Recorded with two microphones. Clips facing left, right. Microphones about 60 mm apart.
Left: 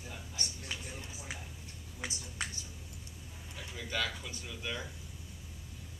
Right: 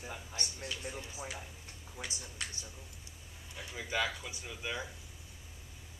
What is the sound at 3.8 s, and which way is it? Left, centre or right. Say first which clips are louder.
Speech: right 2 dB; centre.